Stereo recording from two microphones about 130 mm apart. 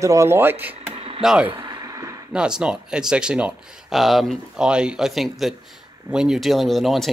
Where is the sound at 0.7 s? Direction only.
50° right (ahead or behind).